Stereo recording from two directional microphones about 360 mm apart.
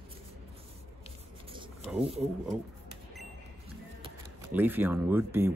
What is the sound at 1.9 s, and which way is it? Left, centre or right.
Speech, centre.